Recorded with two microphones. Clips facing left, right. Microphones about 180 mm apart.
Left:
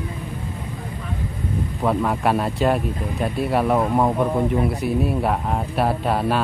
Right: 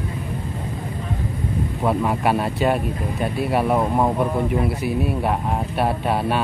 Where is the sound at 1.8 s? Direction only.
5° right (ahead or behind).